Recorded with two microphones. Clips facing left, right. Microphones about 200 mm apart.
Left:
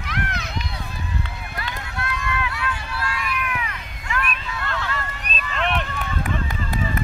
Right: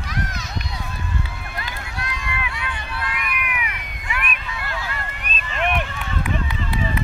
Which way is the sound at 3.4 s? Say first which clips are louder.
Left 2 dB; 15° right (ahead or behind).